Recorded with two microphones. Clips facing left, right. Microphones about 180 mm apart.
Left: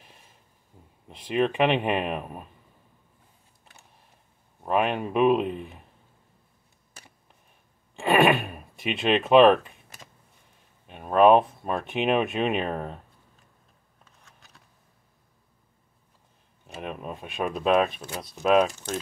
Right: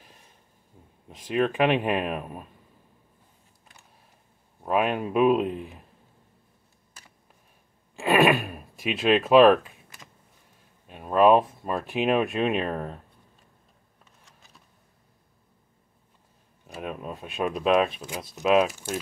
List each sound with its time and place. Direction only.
1.0 s speech: centre (ahead or behind)
4.6 s speech: centre (ahead or behind)
7.9 s speech: centre (ahead or behind)
10.9 s speech: centre (ahead or behind)
16.6 s speech: centre (ahead or behind)